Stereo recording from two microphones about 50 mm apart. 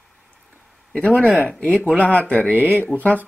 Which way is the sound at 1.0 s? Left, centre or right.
Left.